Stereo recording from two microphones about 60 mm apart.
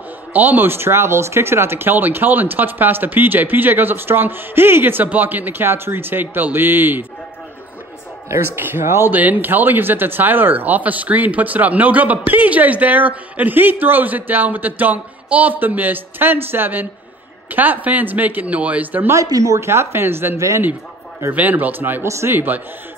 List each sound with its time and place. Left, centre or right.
0.3 s speech: right
8.5 s speech: right
9.1 s speech: right
19.1 s speech: right
20.3 s a man's voice: right
21.3 s speech: right
22.0 s speech: right
22.3 s speech: right